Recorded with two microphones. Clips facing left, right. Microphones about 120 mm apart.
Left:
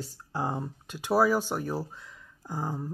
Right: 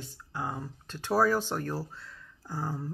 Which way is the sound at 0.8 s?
10° left (ahead or behind).